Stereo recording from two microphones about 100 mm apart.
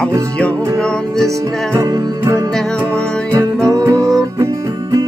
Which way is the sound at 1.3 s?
35° right (ahead or behind).